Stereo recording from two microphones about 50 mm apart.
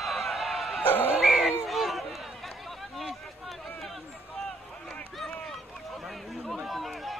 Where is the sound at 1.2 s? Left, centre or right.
Centre.